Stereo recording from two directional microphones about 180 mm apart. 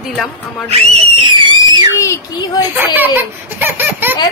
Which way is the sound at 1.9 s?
15° left (ahead or behind).